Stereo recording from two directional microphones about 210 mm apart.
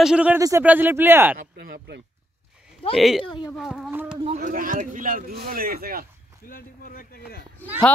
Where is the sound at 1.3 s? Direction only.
45° right (ahead or behind).